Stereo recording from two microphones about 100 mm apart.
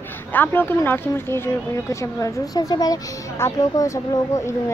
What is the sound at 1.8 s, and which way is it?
Speech, 30° left (ahead or behind).